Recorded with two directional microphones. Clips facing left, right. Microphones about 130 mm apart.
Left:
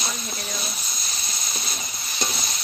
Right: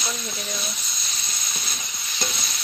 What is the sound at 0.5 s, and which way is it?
Speech, centre (ahead or behind).